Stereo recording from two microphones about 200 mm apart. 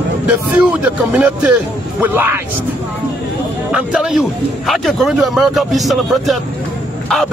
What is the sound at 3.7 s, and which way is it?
Speech, 5° right (ahead or behind).